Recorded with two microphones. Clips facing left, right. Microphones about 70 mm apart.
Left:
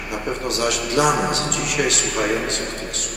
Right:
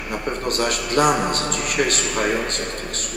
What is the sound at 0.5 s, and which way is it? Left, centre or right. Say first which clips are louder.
A man's voice: even; right.